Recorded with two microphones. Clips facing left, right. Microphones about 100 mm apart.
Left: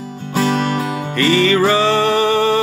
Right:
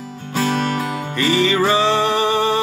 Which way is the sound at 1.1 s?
15° right (ahead or behind).